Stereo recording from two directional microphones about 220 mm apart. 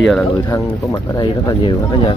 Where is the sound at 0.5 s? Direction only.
15° left (ahead or behind).